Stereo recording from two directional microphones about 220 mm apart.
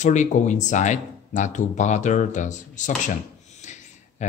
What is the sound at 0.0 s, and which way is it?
Speech, 35° left (ahead or behind).